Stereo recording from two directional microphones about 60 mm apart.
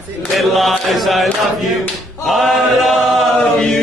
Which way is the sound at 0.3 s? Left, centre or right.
Centre.